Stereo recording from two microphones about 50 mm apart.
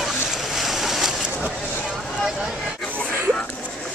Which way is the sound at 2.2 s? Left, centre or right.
Centre.